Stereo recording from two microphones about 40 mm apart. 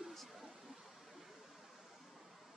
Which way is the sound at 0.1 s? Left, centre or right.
Centre.